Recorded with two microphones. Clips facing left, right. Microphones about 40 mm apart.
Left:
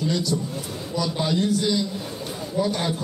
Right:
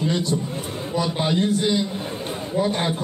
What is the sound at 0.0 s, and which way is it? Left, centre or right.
Speech, right.